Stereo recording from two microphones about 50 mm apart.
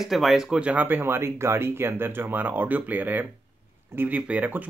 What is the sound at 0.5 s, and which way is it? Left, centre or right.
Speech, right.